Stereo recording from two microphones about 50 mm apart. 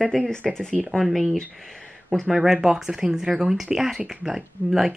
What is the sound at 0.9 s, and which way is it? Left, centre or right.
Speech, centre.